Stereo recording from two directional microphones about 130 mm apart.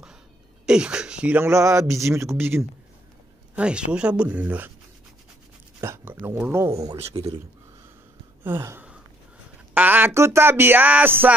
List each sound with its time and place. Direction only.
0.7 s speech: 5° right (ahead or behind)
3.5 s speech: 10° right (ahead or behind)
5.8 s speech: 20° right (ahead or behind)
7.0 s speech: 50° right (ahead or behind)
8.5 s a sound: 15° right (ahead or behind)
9.8 s speech: 15° right (ahead or behind)